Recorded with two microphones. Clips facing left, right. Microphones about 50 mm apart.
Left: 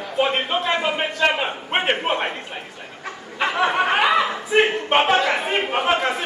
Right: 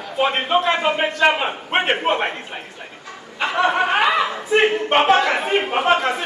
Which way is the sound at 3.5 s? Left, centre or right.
Centre.